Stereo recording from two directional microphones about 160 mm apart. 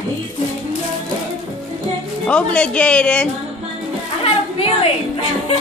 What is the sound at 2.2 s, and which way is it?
Speech, 5° left (ahead or behind).